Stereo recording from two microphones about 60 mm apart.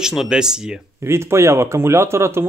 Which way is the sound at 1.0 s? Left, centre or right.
Right.